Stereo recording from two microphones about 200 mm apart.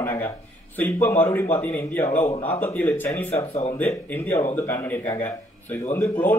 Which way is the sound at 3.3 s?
30° left (ahead or behind).